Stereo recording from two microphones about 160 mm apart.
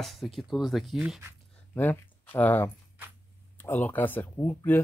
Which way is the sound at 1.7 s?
10° left (ahead or behind).